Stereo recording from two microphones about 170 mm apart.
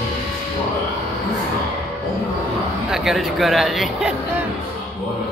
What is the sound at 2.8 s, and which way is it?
Speech, centre (ahead or behind).